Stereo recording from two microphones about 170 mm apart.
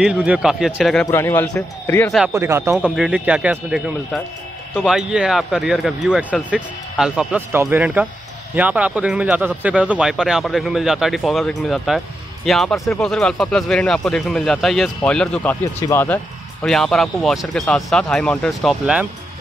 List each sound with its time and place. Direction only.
0.0 s speech: 5° right (ahead or behind)
1.0 s speech: 15° left (ahead or behind)
2.3 s speech: 15° right (ahead or behind); by 16.2 s 15° left (ahead or behind)
16.6 s speech: 5° left (ahead or behind)